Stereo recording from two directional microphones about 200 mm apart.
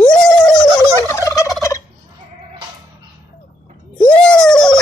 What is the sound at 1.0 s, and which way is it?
Gobble, 15° left (ahead or behind).